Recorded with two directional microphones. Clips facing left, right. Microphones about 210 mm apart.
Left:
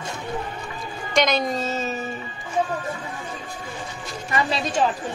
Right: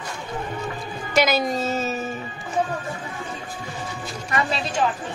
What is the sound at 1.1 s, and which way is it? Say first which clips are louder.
Speech: right 1 dB; 5° right (ahead or behind).